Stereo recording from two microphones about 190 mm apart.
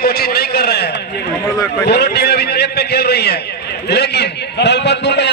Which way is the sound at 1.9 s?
60° left (ahead or behind).